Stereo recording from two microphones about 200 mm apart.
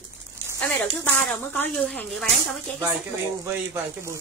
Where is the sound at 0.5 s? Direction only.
5° left (ahead or behind).